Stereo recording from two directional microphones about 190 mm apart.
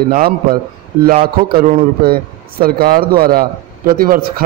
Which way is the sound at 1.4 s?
55° right (ahead or behind).